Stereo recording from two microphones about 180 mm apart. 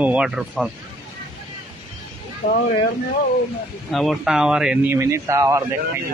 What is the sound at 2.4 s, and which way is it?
Speech, 30° left (ahead or behind).